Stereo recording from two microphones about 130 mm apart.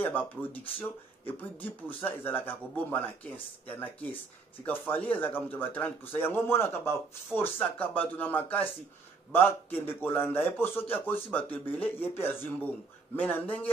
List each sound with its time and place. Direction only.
0.0 s a man's voice: 15° left (ahead or behind)